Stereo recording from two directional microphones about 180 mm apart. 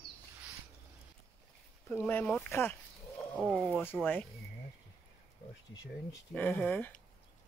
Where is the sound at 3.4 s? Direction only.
5° right (ahead or behind).